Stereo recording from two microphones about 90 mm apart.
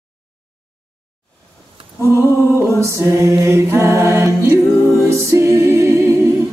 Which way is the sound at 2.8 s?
35° right (ahead or behind).